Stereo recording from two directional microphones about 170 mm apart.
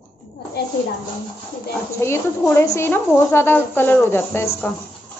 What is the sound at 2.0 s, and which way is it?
A woman's voice, 15° left (ahead or behind).